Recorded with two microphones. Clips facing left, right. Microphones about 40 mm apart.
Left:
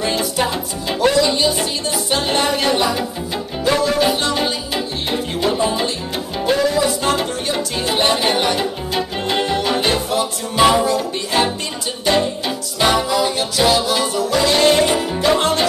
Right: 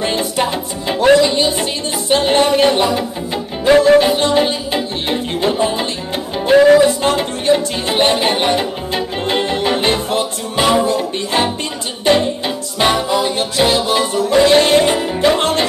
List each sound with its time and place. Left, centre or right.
0.0 s music: right